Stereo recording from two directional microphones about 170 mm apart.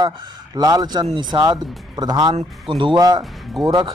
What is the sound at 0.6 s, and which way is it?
Speech, 20° right (ahead or behind).